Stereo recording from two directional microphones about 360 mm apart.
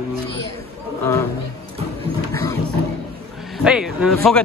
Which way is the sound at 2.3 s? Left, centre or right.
Centre.